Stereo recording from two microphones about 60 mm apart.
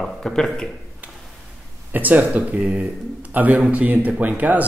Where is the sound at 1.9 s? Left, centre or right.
Right.